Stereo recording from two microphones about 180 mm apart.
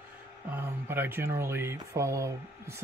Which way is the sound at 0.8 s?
10° right (ahead or behind).